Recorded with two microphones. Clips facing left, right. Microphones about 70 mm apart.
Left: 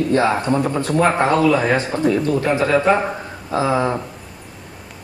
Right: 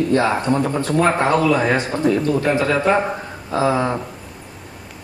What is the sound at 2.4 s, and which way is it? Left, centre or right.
Speech, left.